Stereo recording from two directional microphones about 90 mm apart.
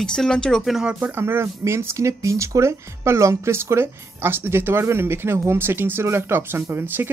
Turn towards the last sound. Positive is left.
turn(degrees=-25)  # may be behind; listen again after turning